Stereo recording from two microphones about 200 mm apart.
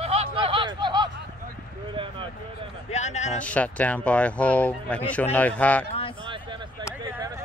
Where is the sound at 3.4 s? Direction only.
5° left (ahead or behind).